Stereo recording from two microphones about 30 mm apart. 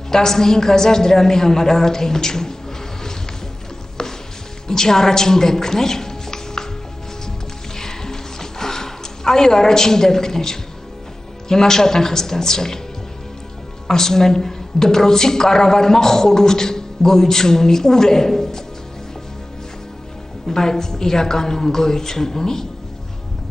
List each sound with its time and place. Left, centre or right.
0.1 s a woman's voice: centre
4.6 s a woman's voice: centre
7.7 s music: centre
11.4 s a woman's voice: centre
13.8 s a woman's voice: centre
20.4 s a woman's voice: centre